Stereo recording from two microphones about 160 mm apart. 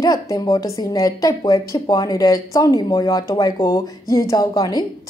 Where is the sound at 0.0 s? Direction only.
25° left (ahead or behind).